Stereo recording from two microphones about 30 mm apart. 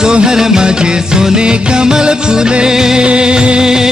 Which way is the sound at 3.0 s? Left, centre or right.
Right.